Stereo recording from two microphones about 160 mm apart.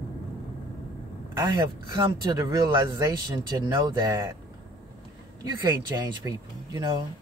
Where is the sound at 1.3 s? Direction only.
25° right (ahead or behind).